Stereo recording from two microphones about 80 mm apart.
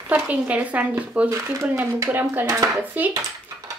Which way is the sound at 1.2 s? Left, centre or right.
Right.